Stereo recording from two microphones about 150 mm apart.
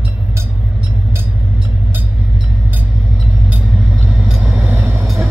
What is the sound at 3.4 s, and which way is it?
Vehicle, 10° right (ahead or behind).